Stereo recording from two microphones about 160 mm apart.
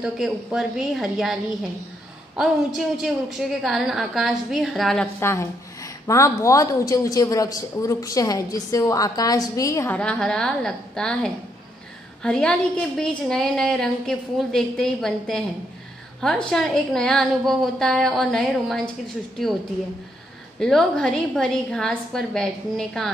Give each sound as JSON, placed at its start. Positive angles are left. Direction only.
{"t": 0.0, "sound": "a woman's voice", "side_deg": -5}
{"t": 5.2, "sound": "a woman's voice", "side_deg": 15}
{"t": 9.9, "sound": "a woman's voice", "side_deg": 5}
{"t": 20.5, "sound": "a woman's voice", "side_deg": 5}